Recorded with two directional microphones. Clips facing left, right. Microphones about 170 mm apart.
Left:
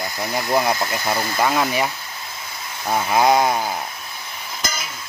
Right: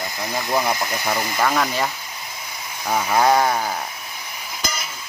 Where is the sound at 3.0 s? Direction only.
15° left (ahead or behind).